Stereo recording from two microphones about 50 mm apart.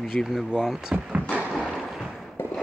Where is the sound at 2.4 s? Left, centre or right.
Left.